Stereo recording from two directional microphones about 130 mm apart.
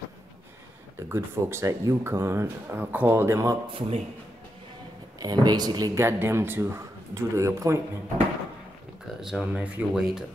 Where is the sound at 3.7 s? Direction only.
45° right (ahead or behind).